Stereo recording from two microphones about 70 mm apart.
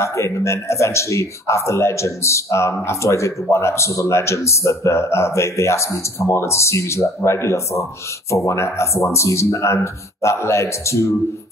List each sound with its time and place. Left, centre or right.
0.0 s speech: left